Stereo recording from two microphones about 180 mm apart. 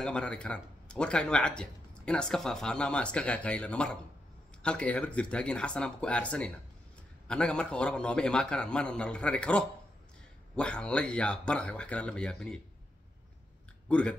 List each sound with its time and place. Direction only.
0.0 s speech: 5° left (ahead or behind)
13.8 s speech: 5° left (ahead or behind)